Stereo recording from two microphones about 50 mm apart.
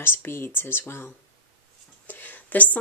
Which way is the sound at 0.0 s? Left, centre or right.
Left.